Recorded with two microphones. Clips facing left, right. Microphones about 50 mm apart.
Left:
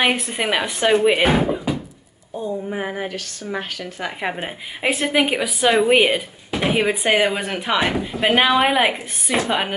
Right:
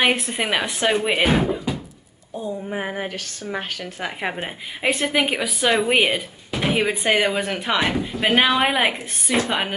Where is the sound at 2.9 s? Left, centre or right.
Right.